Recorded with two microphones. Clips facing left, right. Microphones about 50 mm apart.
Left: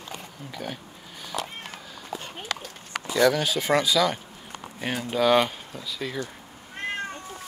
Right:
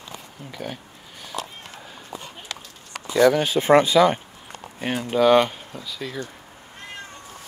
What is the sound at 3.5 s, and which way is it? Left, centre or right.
Speech, right.